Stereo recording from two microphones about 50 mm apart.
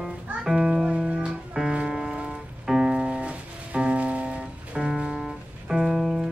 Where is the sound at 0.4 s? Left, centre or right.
Centre.